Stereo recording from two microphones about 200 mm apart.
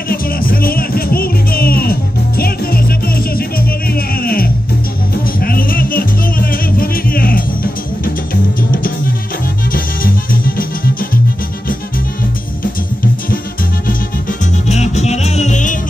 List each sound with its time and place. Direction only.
0.1 s music: 45° left (ahead or behind)
9.7 s music: 45° left (ahead or behind)
14.4 s music: 35° left (ahead or behind)